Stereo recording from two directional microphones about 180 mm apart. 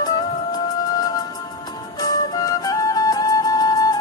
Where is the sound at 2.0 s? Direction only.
20° left (ahead or behind).